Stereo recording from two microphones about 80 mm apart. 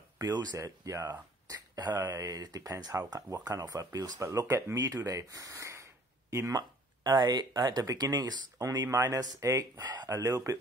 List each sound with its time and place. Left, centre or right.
0.2 s speech: right
1.5 s speech: right
6.5 s speech: right
8.5 s speech: right
9.8 s speech: right
10.0 s speech: right